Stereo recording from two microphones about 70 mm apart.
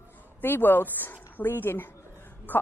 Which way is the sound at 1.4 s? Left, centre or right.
Left.